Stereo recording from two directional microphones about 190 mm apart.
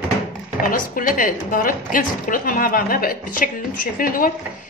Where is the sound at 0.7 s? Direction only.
45° left (ahead or behind).